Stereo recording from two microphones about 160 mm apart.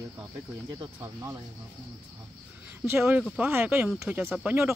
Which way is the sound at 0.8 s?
20° right (ahead or behind).